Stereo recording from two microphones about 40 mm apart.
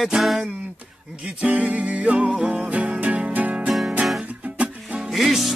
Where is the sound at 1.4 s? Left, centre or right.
Right.